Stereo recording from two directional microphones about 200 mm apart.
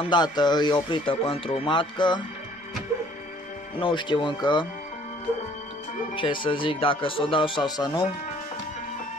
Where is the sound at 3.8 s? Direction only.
25° left (ahead or behind).